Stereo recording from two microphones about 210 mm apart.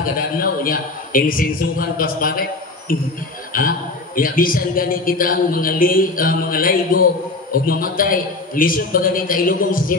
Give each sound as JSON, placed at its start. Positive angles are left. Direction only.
{"t": 0.4, "sound": "a man's voice", "side_deg": 45}